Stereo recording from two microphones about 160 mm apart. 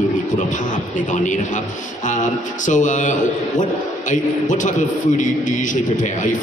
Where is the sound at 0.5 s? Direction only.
50° left (ahead or behind).